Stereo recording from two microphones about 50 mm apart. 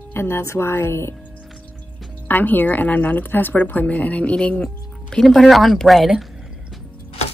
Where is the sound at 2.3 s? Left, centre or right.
Left.